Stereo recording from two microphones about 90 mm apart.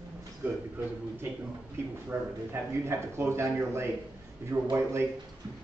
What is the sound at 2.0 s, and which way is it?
A man's voice, 30° right (ahead or behind).